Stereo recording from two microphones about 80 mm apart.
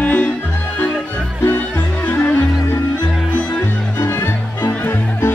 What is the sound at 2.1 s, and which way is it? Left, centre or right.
Music, centre.